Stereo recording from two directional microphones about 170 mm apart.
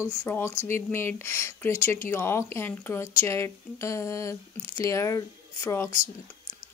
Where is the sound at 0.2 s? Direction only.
10° left (ahead or behind).